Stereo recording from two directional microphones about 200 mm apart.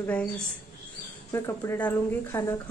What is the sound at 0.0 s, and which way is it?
Speech, 5° left (ahead or behind).